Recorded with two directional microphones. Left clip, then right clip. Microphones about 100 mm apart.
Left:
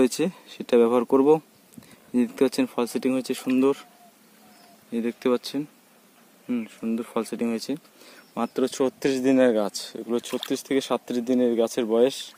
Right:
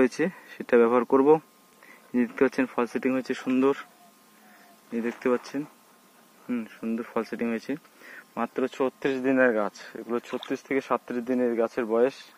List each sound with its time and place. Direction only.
0.0 s speech: 20° left (ahead or behind)
4.9 s speech: 30° left (ahead or behind)
6.5 s speech: 20° left (ahead or behind)
8.4 s speech: 65° left (ahead or behind)
9.9 s speech: 50° left (ahead or behind)
10.2 s speech: 10° left (ahead or behind)
11.1 s speech: 40° left (ahead or behind)
11.3 s speech: 55° left (ahead or behind)